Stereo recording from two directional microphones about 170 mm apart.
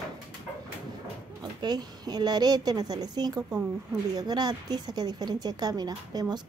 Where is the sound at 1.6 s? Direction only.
25° right (ahead or behind).